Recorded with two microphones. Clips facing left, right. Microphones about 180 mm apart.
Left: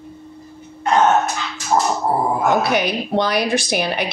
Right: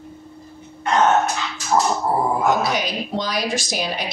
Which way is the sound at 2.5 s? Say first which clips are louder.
Left 4 dB; 60° left (ahead or behind).